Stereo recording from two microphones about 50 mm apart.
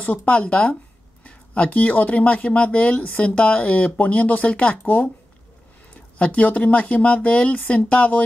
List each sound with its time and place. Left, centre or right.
0.0 s speech: left
6.1 s speech: left